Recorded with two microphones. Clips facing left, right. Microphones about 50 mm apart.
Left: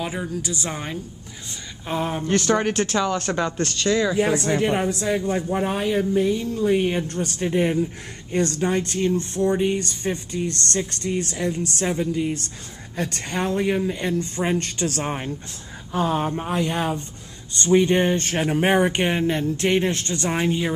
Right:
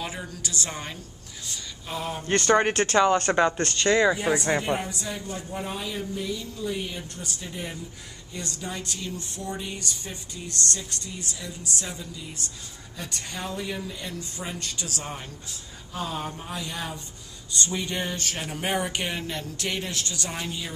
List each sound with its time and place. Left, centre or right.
0.1 s a woman's voice: centre
1.9 s speech: left
2.2 s speech: centre; by 4.2 s right
4.6 s speech: left